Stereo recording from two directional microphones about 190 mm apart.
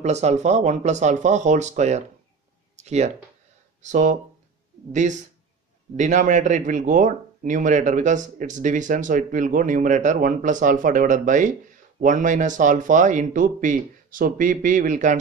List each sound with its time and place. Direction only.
0.0 s speech: 35° right (ahead or behind)